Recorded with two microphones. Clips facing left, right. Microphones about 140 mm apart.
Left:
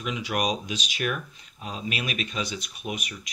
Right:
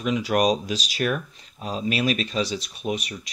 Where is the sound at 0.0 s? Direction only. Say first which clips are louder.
Right 7 dB; 40° right (ahead or behind).